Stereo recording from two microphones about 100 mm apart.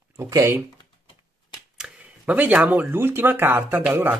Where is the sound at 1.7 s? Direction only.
10° right (ahead or behind).